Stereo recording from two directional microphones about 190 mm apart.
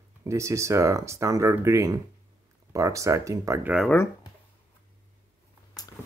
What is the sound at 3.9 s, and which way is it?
Speech, 15° left (ahead or behind).